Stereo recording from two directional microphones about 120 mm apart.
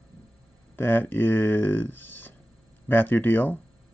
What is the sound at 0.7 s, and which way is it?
Speech, 15° left (ahead or behind).